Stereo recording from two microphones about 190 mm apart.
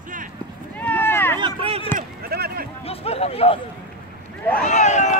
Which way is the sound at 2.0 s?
55° right (ahead or behind).